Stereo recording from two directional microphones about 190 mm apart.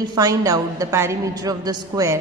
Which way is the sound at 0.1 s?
20° right (ahead or behind).